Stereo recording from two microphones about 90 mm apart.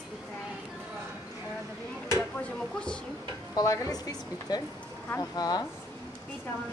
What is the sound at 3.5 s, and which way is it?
A woman's voice, 45° left (ahead or behind).